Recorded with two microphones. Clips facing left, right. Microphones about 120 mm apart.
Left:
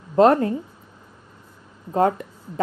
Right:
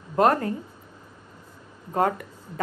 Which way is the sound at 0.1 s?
25° left (ahead or behind).